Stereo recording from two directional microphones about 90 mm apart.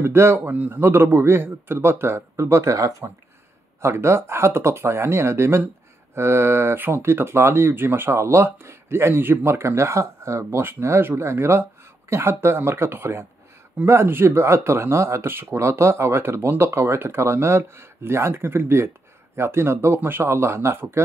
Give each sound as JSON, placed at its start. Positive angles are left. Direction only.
{"t": 0.0, "sound": "a man's voice", "side_deg": -30}